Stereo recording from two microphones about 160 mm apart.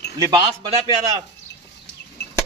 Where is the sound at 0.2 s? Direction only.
30° right (ahead or behind).